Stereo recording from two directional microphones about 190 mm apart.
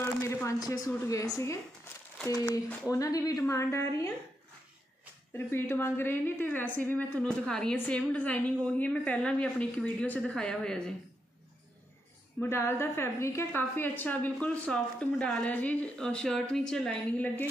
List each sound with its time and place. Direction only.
0.0 s a woman's voice: 15° left (ahead or behind)
2.9 s a woman's voice: 20° left (ahead or behind)
5.5 s a woman's voice: 10° left (ahead or behind)
12.4 s a woman's voice: 15° left (ahead or behind)